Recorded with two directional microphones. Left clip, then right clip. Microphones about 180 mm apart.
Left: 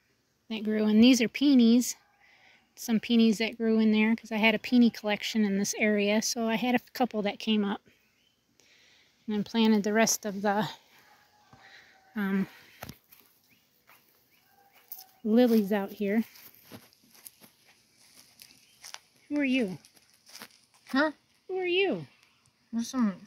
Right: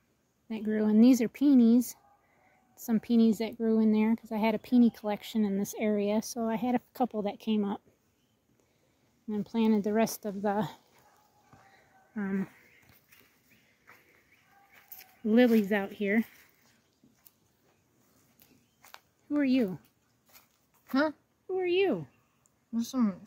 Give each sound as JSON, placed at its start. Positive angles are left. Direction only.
{"t": 0.5, "sound": "speech", "side_deg": -5}
{"t": 9.3, "sound": "speech", "side_deg": 5}
{"t": 12.1, "sound": "speech", "side_deg": 15}
{"t": 15.2, "sound": "speech", "side_deg": 10}
{"t": 18.4, "sound": "a sound", "side_deg": 15}
{"t": 18.8, "sound": "a sound", "side_deg": 0}
{"t": 21.5, "sound": "speech", "side_deg": 0}
{"t": 22.7, "sound": "speech", "side_deg": -15}